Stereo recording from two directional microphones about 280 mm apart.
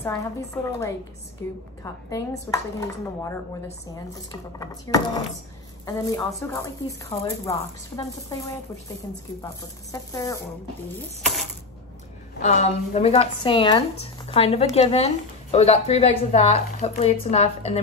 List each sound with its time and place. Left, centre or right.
0.0 s speech: centre
12.4 s speech: left